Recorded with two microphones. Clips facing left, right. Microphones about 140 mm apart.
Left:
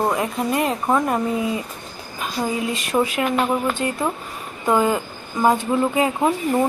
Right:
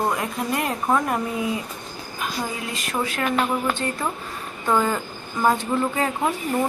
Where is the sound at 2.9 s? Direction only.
15° left (ahead or behind).